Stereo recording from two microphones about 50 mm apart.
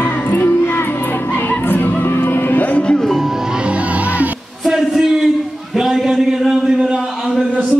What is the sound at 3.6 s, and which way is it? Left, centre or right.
Music, right.